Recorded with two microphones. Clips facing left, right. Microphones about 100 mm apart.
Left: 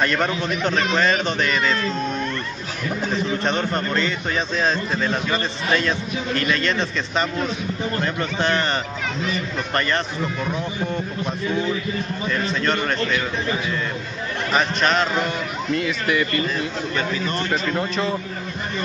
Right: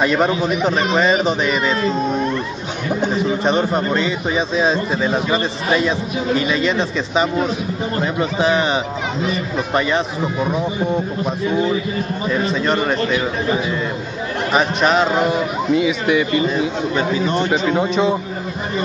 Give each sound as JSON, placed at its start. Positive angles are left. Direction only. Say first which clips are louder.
{"t": 0.0, "sound": "a man's voice", "louder": "right 5 dB", "side_deg": -5}
{"t": 12.3, "sound": "a man's voice", "louder": "right 4 dB", "side_deg": -5}
{"t": 14.5, "sound": "a man's voice", "louder": "right 4 dB", "side_deg": -5}
{"t": 16.9, "sound": "speech", "louder": "right 5 dB", "side_deg": -25}
{"t": 17.3, "sound": "a man's voice", "louder": "right 6 dB", "side_deg": -5}